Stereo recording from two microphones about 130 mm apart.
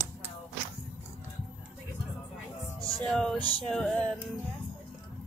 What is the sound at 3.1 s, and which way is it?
Speech, 5° left (ahead or behind).